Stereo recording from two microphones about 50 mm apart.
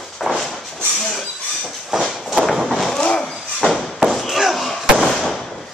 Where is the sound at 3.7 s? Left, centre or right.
Centre.